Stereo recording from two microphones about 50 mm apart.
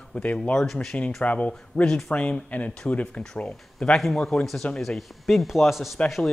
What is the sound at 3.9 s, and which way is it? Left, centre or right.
Speech, centre.